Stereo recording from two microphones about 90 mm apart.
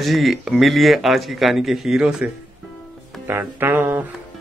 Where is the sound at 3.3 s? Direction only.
25° right (ahead or behind).